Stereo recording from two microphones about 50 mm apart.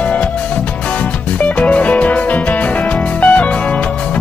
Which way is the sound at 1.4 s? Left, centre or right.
Left.